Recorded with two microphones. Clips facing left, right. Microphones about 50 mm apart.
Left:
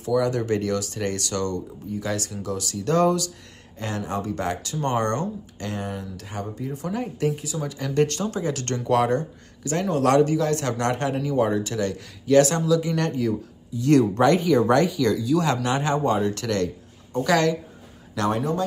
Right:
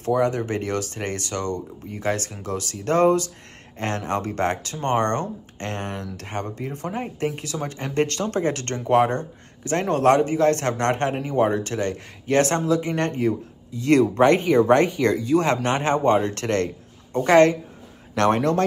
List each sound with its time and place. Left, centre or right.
0.0 s speech: right
1.9 s speech: right
3.7 s speech: right
6.9 s speech: right
7.3 s speech: right
8.7 s speech: right
10.0 s speech: right
10.4 s speech: right
14.1 s speech: right
18.1 s speech: right